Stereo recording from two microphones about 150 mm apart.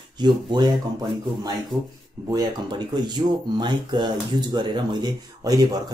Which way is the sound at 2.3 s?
25° right (ahead or behind).